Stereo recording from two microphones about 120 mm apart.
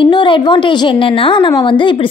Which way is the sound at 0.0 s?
45° left (ahead or behind).